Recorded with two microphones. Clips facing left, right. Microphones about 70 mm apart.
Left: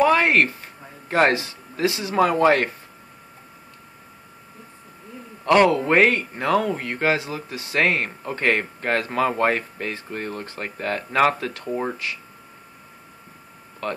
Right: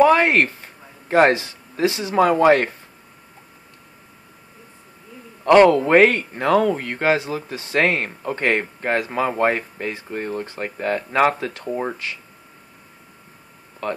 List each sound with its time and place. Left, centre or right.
0.0 s a sound: right
5.4 s speech: right
13.8 s speech: right